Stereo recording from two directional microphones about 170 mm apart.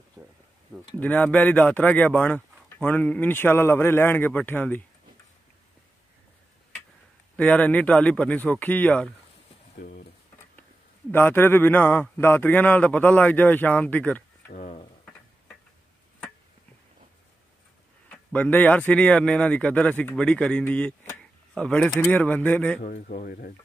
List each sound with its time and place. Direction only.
0.2 s a sound: 5° right (ahead or behind)
0.9 s a man's voice: 10° left (ahead or behind)
7.3 s a man's voice: 10° left (ahead or behind)
9.8 s speech: 60° left (ahead or behind)
11.1 s a man's voice: 10° left (ahead or behind)
14.5 s speech: 45° left (ahead or behind)
18.1 s a man's voice: 10° left (ahead or behind)
22.8 s speech: 60° left (ahead or behind)